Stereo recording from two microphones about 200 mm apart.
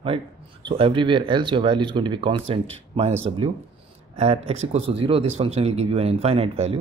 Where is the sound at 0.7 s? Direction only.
25° right (ahead or behind).